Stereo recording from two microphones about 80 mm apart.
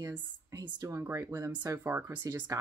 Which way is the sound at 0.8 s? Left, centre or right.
Right.